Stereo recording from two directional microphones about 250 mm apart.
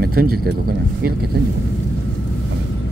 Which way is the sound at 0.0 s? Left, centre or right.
Right.